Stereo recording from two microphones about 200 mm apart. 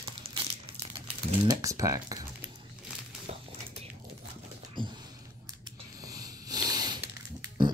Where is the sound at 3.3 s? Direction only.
30° right (ahead or behind).